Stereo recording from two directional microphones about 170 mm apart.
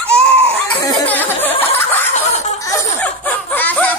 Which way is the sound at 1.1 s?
10° left (ahead or behind).